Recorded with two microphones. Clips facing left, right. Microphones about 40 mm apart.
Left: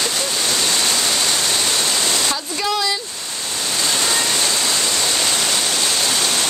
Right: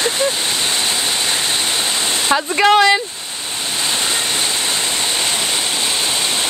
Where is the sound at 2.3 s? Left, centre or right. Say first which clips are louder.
Right 9 dB; right.